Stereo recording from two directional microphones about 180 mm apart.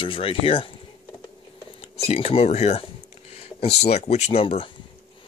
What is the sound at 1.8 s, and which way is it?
Speech, 35° left (ahead or behind).